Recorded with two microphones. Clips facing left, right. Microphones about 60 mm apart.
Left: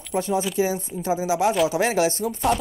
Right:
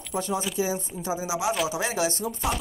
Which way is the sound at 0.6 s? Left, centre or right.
Left.